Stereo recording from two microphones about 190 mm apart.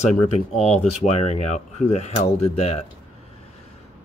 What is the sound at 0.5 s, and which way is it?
Speech, 35° left (ahead or behind).